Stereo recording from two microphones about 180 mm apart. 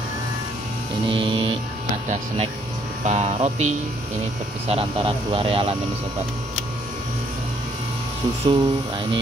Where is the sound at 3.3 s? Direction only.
40° right (ahead or behind).